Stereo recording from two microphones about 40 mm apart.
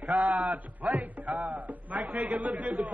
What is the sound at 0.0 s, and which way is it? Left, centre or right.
A man's voice, right.